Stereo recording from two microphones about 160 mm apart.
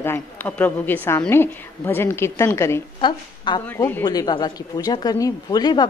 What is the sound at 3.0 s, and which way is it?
Speech, 30° left (ahead or behind).